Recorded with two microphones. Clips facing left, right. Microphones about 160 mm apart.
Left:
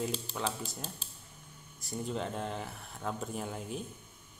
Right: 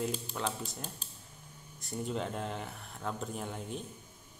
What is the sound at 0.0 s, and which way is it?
Speech, centre (ahead or behind).